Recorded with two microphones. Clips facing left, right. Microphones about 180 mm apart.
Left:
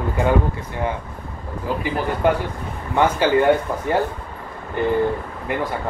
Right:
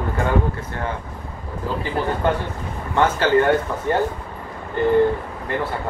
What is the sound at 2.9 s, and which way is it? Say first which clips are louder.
Speech: even; 15° left (ahead or behind).